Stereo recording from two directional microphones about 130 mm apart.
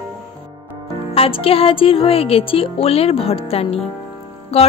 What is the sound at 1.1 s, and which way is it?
Speech, 45° left (ahead or behind).